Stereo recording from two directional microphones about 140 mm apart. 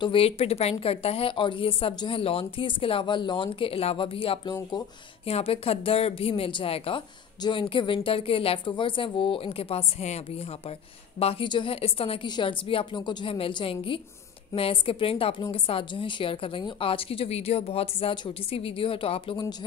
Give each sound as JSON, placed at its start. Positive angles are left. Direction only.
{"t": 0.0, "sound": "a woman's voice", "side_deg": 40}